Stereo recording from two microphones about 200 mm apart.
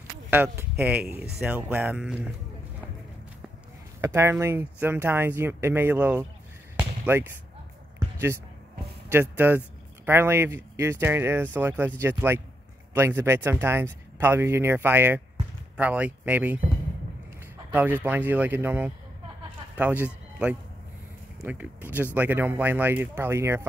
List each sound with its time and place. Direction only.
0.3 s speech: 10° right (ahead or behind)
1.0 s speech: 55° right (ahead or behind)
1.4 s speech: 10° right (ahead or behind)
4.0 s speech: 15° right (ahead or behind)
9.1 s speech: 10° right (ahead or behind)
17.7 s speech: 10° right (ahead or behind)